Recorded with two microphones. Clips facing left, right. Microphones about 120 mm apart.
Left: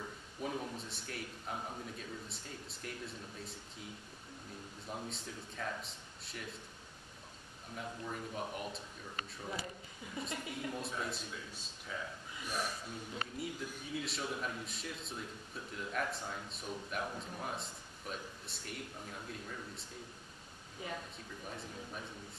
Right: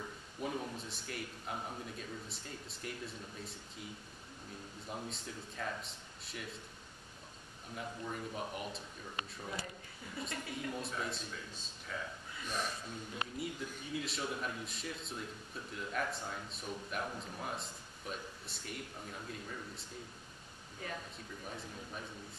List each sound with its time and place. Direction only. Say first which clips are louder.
0.4 s a man's voice: even; centre (ahead or behind)
4.8 s a man's voice: even; centre (ahead or behind)
7.7 s a man's voice: right 1 dB; centre (ahead or behind)
10.2 s a woman's voice: left 1 dB; 20° left (ahead or behind)
10.5 s a man's voice: right 1 dB; centre (ahead or behind)
20.8 s a woman's voice: left 1 dB; 15° left (ahead or behind)
21.5 s a man's voice: left 1 dB; centre (ahead or behind)